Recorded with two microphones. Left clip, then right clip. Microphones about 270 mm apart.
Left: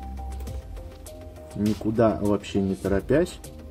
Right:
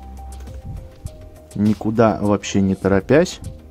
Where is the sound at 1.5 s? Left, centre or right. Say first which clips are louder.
Right 6 dB; right.